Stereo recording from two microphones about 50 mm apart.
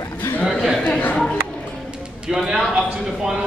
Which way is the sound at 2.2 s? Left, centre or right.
Centre.